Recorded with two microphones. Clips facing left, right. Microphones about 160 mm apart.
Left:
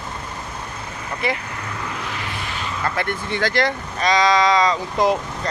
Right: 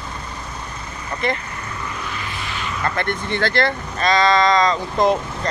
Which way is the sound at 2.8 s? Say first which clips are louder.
Right 1 dB; 5° left (ahead or behind).